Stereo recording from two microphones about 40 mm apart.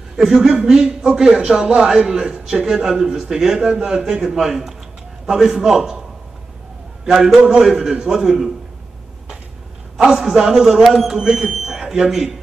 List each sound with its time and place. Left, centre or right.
0.1 s a man's voice: centre
7.6 s a man's voice: centre
9.9 s a man's voice: centre
10.8 s speech: centre
11.1 s speech: centre